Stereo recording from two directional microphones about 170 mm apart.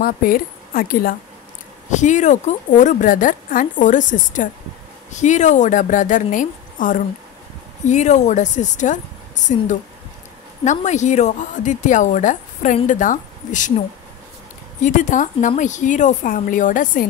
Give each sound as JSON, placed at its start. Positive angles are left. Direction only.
{"t": 0.0, "sound": "speech", "side_deg": 60}
{"t": 1.9, "sound": "a woman's voice", "side_deg": 45}
{"t": 14.8, "sound": "a woman's voice", "side_deg": 45}